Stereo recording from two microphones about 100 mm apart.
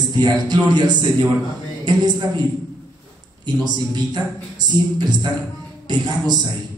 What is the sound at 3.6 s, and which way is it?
Speech, 45° right (ahead or behind).